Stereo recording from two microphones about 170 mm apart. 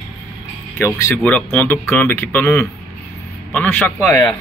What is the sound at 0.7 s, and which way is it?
Speech, 15° left (ahead or behind).